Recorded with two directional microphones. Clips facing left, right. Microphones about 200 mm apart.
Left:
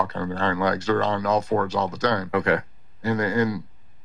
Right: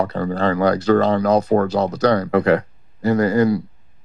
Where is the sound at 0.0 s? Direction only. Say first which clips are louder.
Right 6 dB; 35° right (ahead or behind).